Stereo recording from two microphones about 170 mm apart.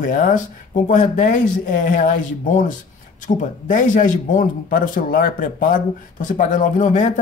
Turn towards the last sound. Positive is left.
turn(degrees=45)  # may be behind; listen again after turning